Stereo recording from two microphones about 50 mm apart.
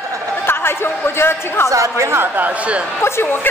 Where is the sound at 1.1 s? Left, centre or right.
Left.